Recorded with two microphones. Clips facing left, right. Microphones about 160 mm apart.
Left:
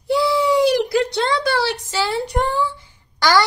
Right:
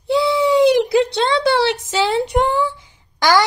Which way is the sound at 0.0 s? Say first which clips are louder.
Right 2 dB; 25° right (ahead or behind).